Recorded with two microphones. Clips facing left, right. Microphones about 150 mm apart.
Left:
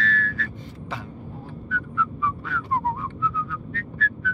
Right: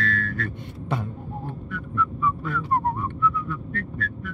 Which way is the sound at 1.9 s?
50° right (ahead or behind).